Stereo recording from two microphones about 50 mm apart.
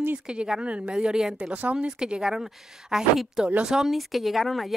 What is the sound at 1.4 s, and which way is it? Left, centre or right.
Speech, right.